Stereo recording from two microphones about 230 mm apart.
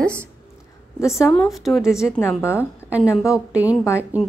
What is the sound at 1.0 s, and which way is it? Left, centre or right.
Speech, centre.